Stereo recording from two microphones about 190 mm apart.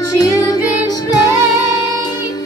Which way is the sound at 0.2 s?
20° left (ahead or behind).